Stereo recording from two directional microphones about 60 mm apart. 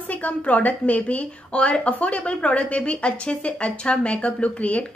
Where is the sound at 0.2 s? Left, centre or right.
Left.